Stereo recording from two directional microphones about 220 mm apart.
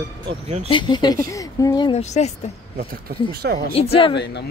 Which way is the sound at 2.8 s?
45° right (ahead or behind).